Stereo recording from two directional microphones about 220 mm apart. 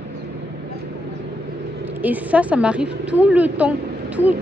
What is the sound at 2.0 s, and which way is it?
A woman's voice, 5° right (ahead or behind).